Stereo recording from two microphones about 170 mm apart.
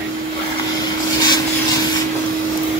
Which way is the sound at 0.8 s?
25° left (ahead or behind).